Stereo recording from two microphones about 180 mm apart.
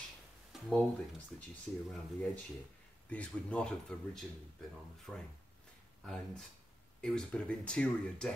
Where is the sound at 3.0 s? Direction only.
5° left (ahead or behind).